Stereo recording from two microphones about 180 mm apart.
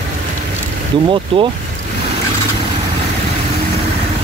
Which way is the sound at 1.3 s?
30° right (ahead or behind).